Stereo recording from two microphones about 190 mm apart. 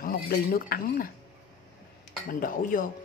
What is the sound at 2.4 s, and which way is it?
Dishes, 45° left (ahead or behind).